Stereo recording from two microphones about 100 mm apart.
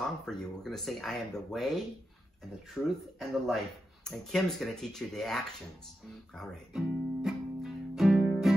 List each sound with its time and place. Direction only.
0.0 s speech: 5° left (ahead or behind)
2.7 s speech: centre (ahead or behind)
7.2 s music: centre (ahead or behind)